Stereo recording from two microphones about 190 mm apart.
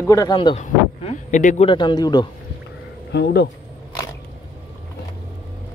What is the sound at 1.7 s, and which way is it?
Speech, 25° left (ahead or behind).